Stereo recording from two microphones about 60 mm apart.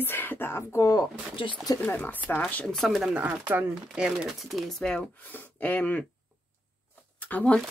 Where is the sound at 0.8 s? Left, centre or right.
Left.